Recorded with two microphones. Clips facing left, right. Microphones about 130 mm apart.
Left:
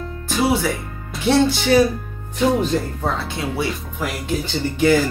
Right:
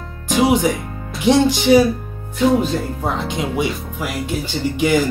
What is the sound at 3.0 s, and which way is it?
Speech, 15° right (ahead or behind).